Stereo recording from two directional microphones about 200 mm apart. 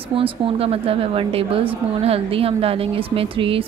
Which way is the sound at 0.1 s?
25° right (ahead or behind).